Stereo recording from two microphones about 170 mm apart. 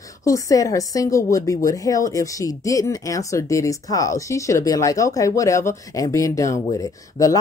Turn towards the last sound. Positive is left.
turn(degrees=20)  # may be behind; listen again after turning